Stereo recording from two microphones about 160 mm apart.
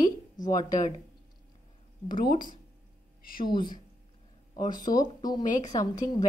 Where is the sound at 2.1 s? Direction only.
60° left (ahead or behind).